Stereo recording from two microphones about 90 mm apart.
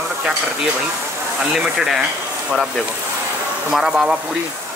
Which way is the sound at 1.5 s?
5° right (ahead or behind).